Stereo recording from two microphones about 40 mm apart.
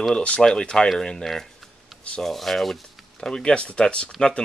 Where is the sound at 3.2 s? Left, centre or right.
Left.